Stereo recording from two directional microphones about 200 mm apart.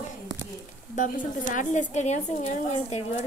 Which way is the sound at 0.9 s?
40° left (ahead or behind).